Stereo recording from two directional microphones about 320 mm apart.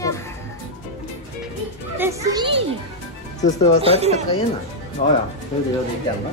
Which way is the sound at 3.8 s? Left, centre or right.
Centre.